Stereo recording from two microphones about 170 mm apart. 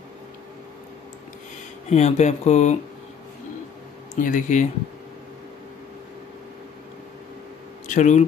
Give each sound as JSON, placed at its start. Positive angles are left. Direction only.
{"t": 1.9, "sound": "speech", "side_deg": 40}
{"t": 4.1, "sound": "speech", "side_deg": 50}
{"t": 7.8, "sound": "speech", "side_deg": 45}